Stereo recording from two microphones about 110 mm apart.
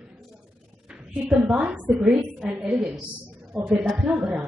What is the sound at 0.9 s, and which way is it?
A woman's voice, 10° right (ahead or behind).